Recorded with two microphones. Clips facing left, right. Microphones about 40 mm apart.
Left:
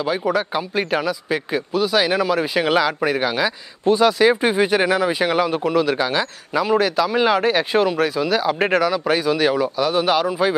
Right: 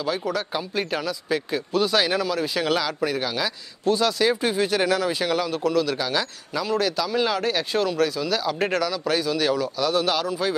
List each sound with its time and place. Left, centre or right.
0.0 s speech: left
1.7 s speech: centre; by 10.5 s left